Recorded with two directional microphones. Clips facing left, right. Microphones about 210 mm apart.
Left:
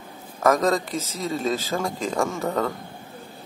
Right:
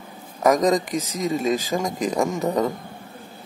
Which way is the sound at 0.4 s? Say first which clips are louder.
Right 2 dB; 15° right (ahead or behind).